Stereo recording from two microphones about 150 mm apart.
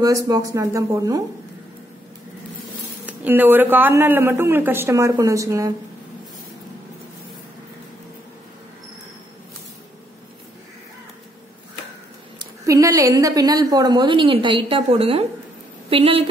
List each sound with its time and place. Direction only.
0.0 s speech: 25° right (ahead or behind)
3.1 s speech: 10° right (ahead or behind)
12.4 s a woman's voice: 20° right (ahead or behind); by 16.3 s 40° right (ahead or behind)